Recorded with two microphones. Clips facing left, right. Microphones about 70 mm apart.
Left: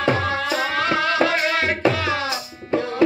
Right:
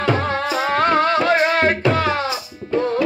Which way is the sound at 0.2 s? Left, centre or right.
Right.